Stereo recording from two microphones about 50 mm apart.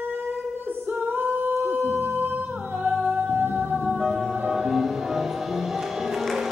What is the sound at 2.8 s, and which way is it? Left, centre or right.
Music, right.